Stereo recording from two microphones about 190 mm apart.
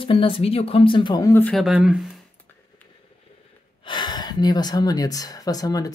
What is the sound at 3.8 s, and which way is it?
Speech, 25° left (ahead or behind).